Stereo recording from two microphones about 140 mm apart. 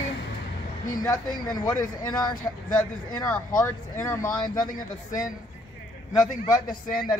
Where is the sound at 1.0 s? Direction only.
25° left (ahead or behind).